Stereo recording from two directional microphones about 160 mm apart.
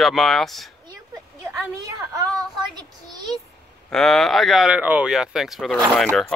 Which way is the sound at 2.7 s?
25° right (ahead or behind).